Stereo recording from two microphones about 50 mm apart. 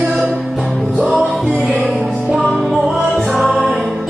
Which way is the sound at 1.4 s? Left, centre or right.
Right.